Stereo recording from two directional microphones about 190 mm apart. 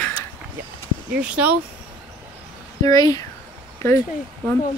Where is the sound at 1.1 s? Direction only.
5° right (ahead or behind).